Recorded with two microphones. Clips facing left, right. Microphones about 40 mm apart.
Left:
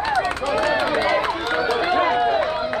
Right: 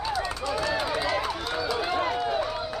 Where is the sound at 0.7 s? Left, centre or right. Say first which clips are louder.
Left 7 dB; left.